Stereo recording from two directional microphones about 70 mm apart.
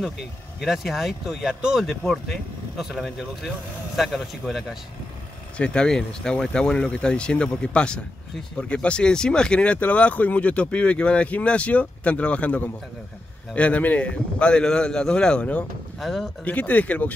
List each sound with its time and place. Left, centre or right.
0.6 s speech: centre
1.9 s speech: centre
5.6 s speech: centre
16.0 s speech: centre
16.4 s speech: left